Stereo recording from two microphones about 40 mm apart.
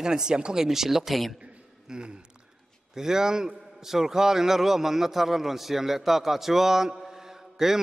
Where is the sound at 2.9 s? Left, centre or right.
Centre.